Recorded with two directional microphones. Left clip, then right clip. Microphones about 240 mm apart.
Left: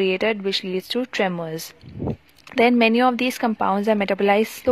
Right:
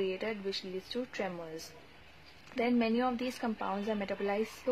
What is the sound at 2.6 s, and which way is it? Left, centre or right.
Speech, left.